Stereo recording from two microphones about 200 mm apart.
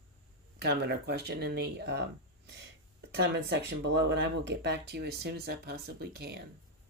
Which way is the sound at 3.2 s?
60° right (ahead or behind).